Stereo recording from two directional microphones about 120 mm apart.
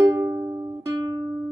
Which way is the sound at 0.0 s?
30° right (ahead or behind).